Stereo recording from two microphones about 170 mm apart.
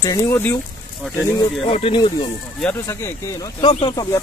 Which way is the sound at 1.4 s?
30° left (ahead or behind).